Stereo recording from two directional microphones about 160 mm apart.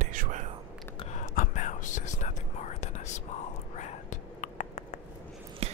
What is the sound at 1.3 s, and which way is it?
Whispering, 55° left (ahead or behind).